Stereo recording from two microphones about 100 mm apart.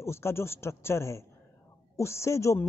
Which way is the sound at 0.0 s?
25° left (ahead or behind).